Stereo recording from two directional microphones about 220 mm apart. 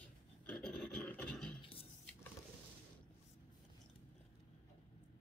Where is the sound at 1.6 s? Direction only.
25° left (ahead or behind).